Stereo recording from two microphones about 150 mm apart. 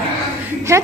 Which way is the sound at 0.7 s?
15° right (ahead or behind).